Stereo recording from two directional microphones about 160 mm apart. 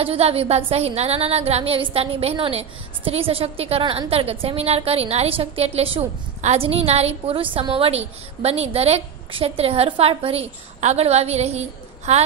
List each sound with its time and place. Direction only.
0.0 s a woman's voice: 35° right (ahead or behind)